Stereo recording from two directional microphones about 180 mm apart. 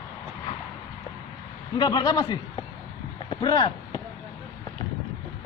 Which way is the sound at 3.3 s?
25° left (ahead or behind).